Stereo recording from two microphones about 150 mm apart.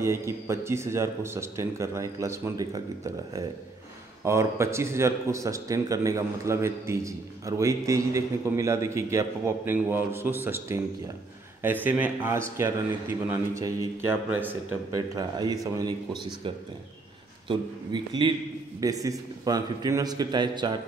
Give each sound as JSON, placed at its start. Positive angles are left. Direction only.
{"t": 0.0, "sound": "a man's voice", "side_deg": -20}